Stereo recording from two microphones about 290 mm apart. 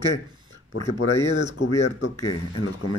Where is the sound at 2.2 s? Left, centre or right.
Left.